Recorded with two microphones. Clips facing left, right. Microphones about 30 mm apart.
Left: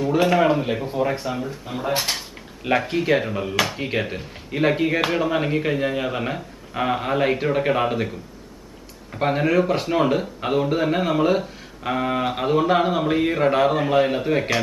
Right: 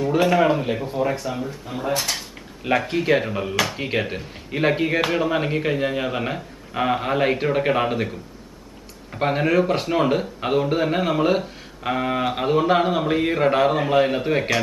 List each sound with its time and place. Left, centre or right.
0.0 s speech: centre
2.1 s speech: centre
9.1 s speech: centre